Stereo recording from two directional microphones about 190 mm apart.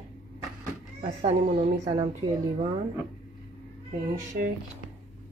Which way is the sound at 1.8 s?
20° right (ahead or behind).